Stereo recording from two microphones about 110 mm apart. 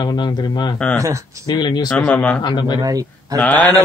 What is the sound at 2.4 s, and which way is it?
Speech, 45° left (ahead or behind).